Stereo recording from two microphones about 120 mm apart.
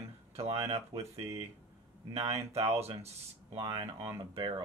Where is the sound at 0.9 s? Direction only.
30° right (ahead or behind).